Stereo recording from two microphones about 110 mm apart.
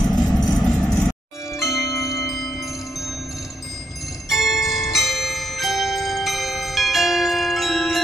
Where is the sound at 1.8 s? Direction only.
30° left (ahead or behind).